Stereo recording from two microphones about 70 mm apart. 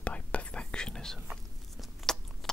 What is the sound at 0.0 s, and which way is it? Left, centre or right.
Whispering, centre.